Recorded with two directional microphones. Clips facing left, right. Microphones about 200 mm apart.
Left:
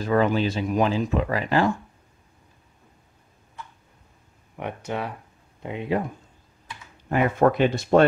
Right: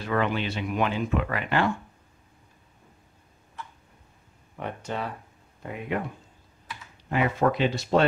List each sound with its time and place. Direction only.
0.0 s speech: 40° left (ahead or behind)
4.6 s speech: 15° left (ahead or behind)
5.6 s speech: 25° left (ahead or behind)
7.1 s speech: 50° left (ahead or behind)